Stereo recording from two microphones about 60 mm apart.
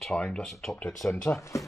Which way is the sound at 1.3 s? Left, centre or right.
Left.